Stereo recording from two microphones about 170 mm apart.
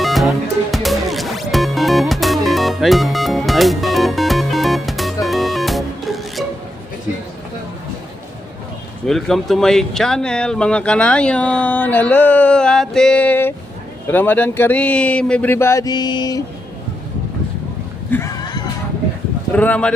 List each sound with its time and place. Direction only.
0.0 s music: centre (ahead or behind)
9.0 s speech: centre (ahead or behind); by 16.4 s 25° left (ahead or behind)
18.1 s a sound: 20° left (ahead or behind)
19.5 s speech: 10° left (ahead or behind)